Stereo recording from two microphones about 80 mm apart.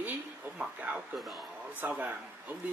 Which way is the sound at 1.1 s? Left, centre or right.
Centre.